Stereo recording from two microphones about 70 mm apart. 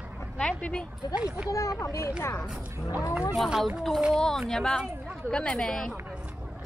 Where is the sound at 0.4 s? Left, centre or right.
Centre.